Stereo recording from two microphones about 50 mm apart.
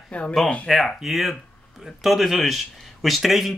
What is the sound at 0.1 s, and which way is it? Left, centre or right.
Speech, left.